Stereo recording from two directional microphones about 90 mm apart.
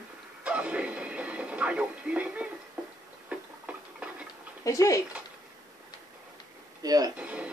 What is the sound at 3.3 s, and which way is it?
Tick-tock, 15° right (ahead or behind).